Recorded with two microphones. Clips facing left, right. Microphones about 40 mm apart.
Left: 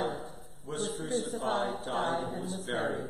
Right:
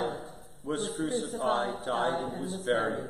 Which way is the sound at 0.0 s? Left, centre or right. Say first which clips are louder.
Right 1 dB; centre.